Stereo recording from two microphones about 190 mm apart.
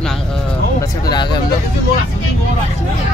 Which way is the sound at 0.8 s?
25° left (ahead or behind).